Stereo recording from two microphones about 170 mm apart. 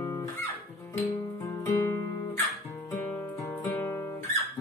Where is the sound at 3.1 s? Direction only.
10° left (ahead or behind).